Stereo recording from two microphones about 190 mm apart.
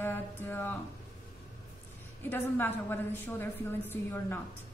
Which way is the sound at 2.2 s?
10° left (ahead or behind).